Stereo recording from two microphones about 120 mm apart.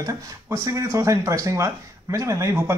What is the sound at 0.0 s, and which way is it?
Speech, 30° right (ahead or behind).